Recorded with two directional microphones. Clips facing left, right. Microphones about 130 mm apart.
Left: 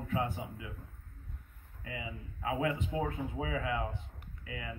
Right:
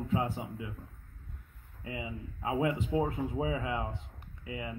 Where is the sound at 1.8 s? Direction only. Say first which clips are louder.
Right 3 dB; 25° right (ahead or behind).